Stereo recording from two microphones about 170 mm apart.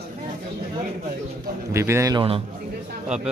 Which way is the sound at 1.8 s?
15° right (ahead or behind).